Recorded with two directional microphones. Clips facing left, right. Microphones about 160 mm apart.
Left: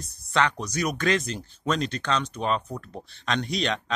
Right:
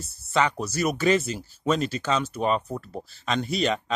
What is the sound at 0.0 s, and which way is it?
Speech, 5° right (ahead or behind).